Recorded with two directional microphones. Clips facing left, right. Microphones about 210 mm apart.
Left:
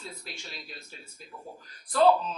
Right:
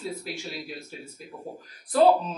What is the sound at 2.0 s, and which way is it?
Speech, 10° right (ahead or behind).